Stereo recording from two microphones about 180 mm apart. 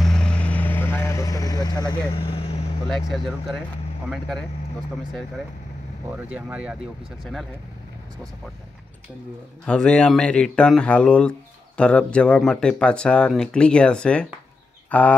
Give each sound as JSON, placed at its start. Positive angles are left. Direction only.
{"t": 0.0, "sound": "vehicle", "side_deg": 5}
{"t": 6.0, "sound": "speech", "side_deg": -10}
{"t": 9.7, "sound": "speech", "side_deg": 5}